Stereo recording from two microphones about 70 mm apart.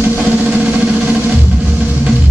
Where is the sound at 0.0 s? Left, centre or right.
Centre.